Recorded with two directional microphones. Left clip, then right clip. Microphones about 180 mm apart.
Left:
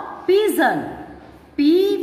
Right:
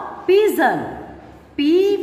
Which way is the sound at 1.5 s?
10° left (ahead or behind).